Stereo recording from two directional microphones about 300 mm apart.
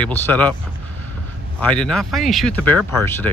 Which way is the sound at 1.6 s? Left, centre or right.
Centre.